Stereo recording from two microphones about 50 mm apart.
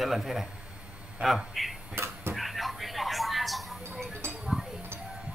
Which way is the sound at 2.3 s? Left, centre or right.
Centre.